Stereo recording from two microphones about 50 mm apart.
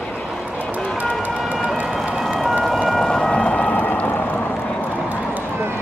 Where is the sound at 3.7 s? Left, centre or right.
Left.